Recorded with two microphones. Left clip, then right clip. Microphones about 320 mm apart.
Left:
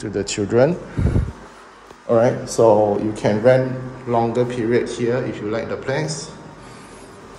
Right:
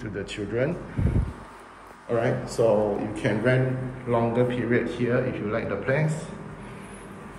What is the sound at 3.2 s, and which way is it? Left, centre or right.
A man's voice, centre.